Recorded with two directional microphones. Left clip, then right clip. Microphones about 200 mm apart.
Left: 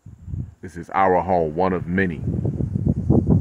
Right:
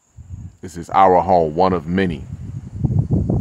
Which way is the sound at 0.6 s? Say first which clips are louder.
Right 6 dB; 25° right (ahead or behind).